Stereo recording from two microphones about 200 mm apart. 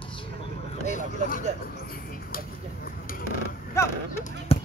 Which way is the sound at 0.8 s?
40° left (ahead or behind).